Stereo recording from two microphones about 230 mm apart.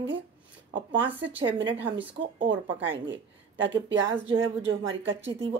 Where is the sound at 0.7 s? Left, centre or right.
Right.